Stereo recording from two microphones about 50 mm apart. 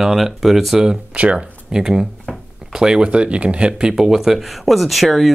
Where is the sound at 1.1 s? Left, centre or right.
Right.